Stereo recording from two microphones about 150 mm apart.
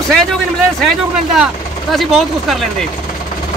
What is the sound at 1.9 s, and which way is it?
Speech, centre (ahead or behind).